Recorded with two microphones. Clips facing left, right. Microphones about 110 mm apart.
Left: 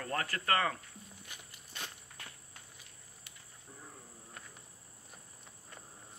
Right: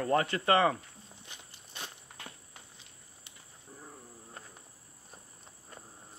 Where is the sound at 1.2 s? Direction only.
25° right (ahead or behind).